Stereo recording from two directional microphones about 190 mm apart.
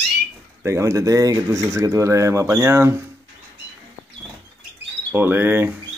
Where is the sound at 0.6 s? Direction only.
15° right (ahead or behind).